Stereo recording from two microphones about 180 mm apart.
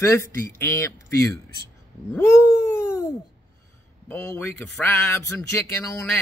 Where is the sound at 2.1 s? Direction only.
15° left (ahead or behind).